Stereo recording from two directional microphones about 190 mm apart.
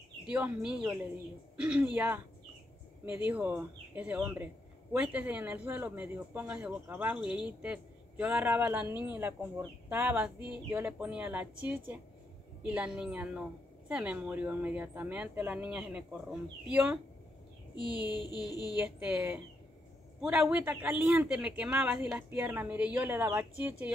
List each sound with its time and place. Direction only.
0.3 s a woman's voice: 5° right (ahead or behind)
3.3 s a woman's voice: 10° right (ahead or behind)
18.0 s music: 25° left (ahead or behind)
18.7 s a woman's voice: 10° right (ahead or behind)